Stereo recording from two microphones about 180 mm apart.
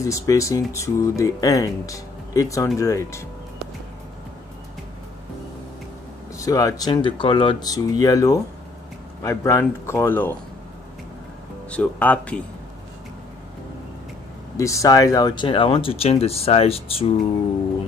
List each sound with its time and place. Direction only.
0.0 s speech: 15° left (ahead or behind)
6.3 s speech: 20° left (ahead or behind)
11.7 s speech: 10° left (ahead or behind)
14.6 s speech: 15° left (ahead or behind); by 17.1 s 30° left (ahead or behind)